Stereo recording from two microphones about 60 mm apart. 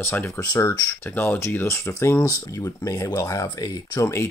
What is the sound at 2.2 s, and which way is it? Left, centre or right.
Speech, left.